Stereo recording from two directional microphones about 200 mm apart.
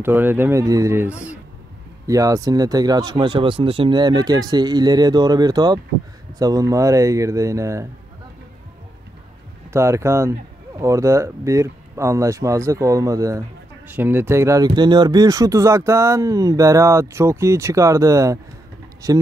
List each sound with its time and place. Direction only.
0.0 s speech: 10° right (ahead or behind)
9.7 s speech: 15° right (ahead or behind)